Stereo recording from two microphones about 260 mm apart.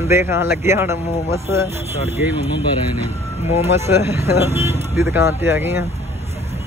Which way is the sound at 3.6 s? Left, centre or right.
Centre.